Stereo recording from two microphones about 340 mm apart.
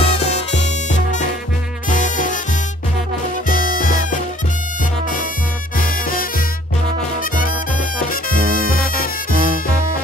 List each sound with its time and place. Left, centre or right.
0.0 s music: centre
3.4 s music: left
5.8 s music: left
8.0 s music: left